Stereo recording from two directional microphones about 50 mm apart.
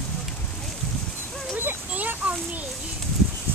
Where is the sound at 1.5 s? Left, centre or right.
Right.